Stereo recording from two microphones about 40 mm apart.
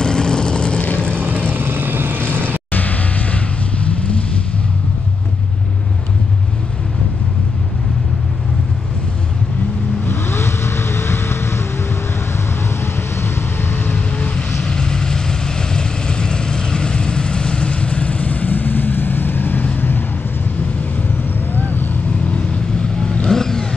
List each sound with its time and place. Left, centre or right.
0.0 s vehicle: left
1.5 s vehicle: right
2.7 s music: left
10.0 s vehicle: left
12.8 s vehicle: left
14.6 s vehicle: centre; by 19.6 s left
21.5 s vehicle: left
22.3 s vehicle: left